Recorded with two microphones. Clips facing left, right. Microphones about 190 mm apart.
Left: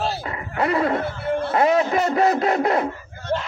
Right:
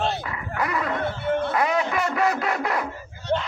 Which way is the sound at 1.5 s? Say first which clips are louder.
Left 5 dB; 25° left (ahead or behind).